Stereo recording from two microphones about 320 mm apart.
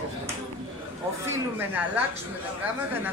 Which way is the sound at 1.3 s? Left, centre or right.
Centre.